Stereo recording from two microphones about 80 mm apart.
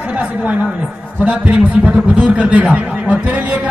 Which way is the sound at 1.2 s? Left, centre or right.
Centre.